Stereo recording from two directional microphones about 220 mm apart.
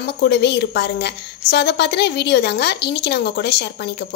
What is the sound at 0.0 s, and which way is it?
A woman's voice, 50° left (ahead or behind).